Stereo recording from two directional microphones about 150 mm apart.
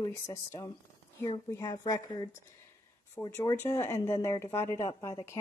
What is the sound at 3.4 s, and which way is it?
Speech, 20° left (ahead or behind).